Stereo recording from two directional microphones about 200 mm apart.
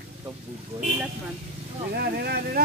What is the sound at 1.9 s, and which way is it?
Speech, 50° right (ahead or behind).